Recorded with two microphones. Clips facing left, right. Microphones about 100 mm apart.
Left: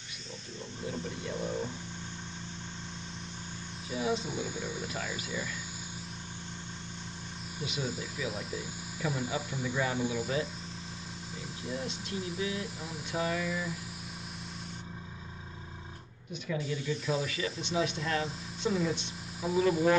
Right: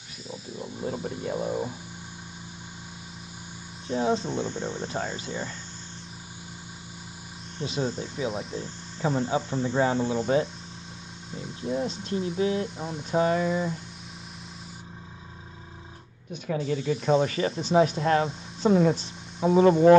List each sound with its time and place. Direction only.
0.8 s a sound: 45° right (ahead or behind)
3.9 s speech: 35° right (ahead or behind)
4.3 s speech: 10° left (ahead or behind)
4.8 s speech: 30° right (ahead or behind)
7.6 s speech: 35° right (ahead or behind)
11.3 s speech: centre (ahead or behind)
11.8 s speech: 35° right (ahead or behind)
16.4 s speech: 50° right (ahead or behind)